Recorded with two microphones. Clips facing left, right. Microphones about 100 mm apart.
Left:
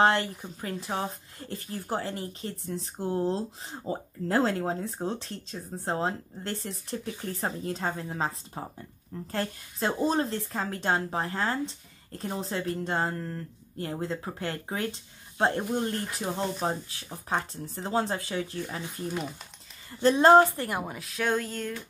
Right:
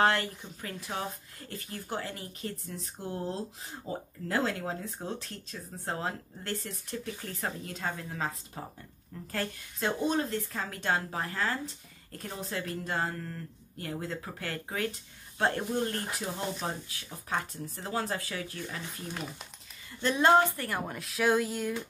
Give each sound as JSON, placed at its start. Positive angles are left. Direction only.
{"t": 0.0, "sound": "a woman's voice", "side_deg": 25}
{"t": 20.0, "sound": "speech", "side_deg": 35}
{"t": 20.8, "sound": "speech", "side_deg": 0}